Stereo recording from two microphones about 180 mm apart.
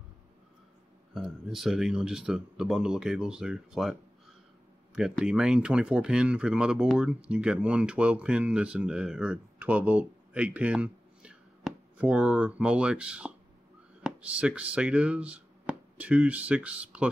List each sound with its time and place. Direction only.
1.1 s speech: centre (ahead or behind)
4.9 s speech: 5° right (ahead or behind)